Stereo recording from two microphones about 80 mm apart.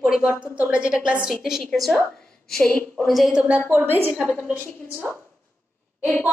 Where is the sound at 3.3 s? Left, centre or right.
Centre.